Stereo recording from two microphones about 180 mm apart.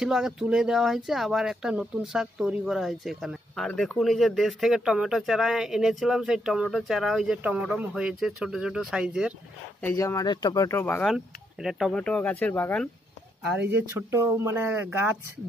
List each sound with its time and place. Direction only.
0.0 s speech: 5° right (ahead or behind)
9.8 s speech: 15° left (ahead or behind)
13.5 s speech: 10° right (ahead or behind)